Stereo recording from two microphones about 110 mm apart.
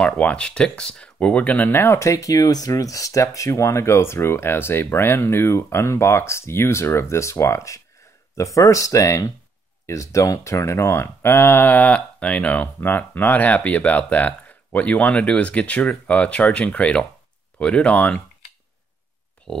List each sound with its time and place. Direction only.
0.0 s speech: 10° left (ahead or behind)
19.5 s speech: 5° left (ahead or behind)